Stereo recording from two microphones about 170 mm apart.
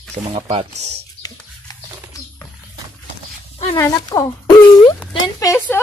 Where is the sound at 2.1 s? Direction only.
20° left (ahead or behind).